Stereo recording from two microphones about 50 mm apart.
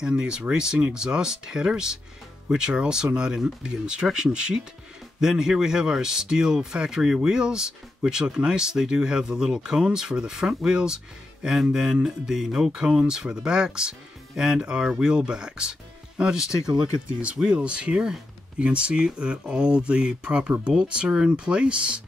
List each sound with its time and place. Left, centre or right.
0.0 s speech: centre